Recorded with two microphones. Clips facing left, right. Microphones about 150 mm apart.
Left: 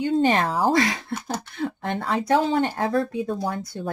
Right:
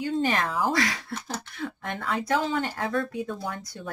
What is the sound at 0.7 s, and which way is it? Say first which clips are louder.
Speech: left 5 dB; 25° left (ahead or behind).